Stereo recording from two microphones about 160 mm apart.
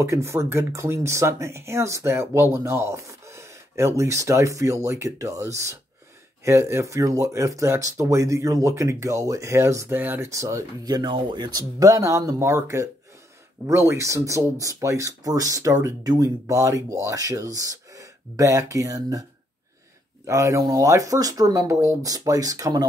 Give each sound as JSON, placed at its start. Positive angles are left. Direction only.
{"t": 0.0, "sound": "speech", "side_deg": -15}
{"t": 20.2, "sound": "speech", "side_deg": -20}